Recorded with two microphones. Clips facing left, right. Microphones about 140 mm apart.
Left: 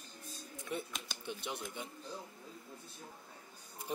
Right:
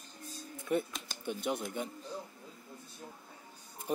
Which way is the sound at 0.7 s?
50° right (ahead or behind).